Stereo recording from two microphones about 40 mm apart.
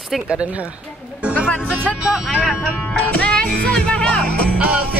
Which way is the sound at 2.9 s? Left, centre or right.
Left.